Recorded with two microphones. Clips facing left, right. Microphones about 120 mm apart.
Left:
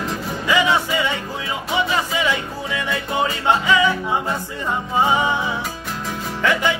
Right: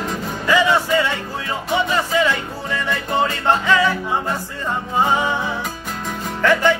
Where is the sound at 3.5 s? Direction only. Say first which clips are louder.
Left 1 dB; 15° left (ahead or behind).